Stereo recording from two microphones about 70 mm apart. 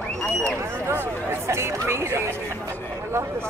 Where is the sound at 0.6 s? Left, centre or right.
Right.